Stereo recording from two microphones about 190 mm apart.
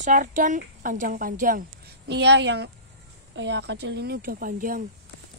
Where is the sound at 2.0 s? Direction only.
65° right (ahead or behind); by 4.8 s 45° right (ahead or behind).